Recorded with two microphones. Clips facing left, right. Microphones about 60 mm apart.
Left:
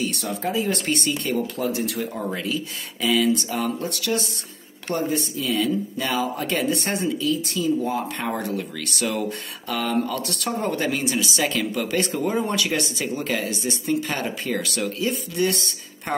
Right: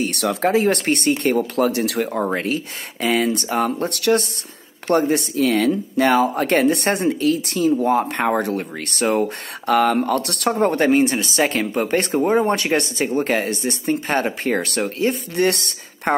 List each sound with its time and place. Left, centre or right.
0.0 s speech: right
9.7 s speech: right
10.5 s speech: right